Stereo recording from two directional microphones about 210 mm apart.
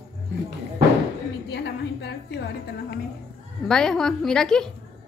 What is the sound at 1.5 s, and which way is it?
A woman's voice, 55° left (ahead or behind).